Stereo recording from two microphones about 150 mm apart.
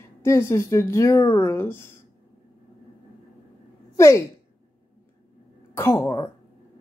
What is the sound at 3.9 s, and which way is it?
Speech, 20° left (ahead or behind).